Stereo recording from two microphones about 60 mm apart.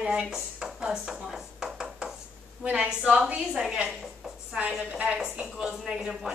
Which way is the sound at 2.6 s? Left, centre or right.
Centre.